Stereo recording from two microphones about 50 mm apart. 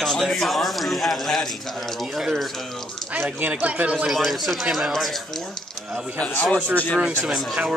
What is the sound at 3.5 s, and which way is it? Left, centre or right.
Speech, right.